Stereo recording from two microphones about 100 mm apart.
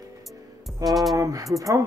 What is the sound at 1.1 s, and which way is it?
Speech, 35° right (ahead or behind).